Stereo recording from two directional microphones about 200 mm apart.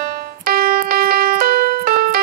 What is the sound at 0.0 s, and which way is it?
Music, 50° right (ahead or behind).